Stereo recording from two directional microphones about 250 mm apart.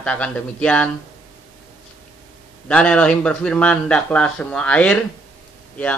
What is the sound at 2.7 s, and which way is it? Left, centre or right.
Speech, centre.